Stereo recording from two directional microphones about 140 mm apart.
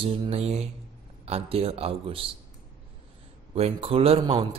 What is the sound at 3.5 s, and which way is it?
Speech, 45° right (ahead or behind).